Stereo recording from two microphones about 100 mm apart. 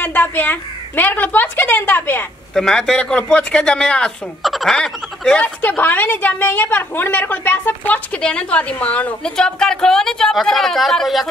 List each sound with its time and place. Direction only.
0.0 s a woman's voice: 20° left (ahead or behind)
2.5 s a woman's voice: 5° left (ahead or behind)
5.4 s a woman's voice: 20° left (ahead or behind); by 11.2 s centre (ahead or behind)